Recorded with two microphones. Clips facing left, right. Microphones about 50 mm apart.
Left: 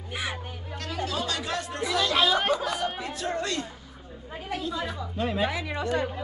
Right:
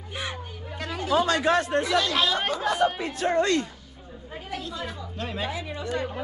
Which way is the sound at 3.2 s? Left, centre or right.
Right.